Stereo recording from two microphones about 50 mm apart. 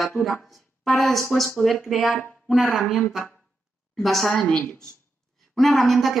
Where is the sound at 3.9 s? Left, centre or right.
Centre.